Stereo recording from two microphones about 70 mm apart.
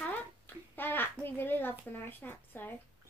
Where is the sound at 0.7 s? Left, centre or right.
Left.